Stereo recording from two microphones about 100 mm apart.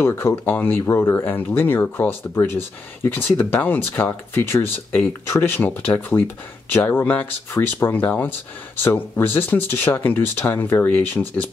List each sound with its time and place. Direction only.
0.0 s speech: 25° left (ahead or behind)